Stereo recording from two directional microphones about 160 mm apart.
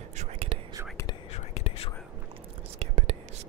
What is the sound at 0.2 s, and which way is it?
Whispering, 40° right (ahead or behind).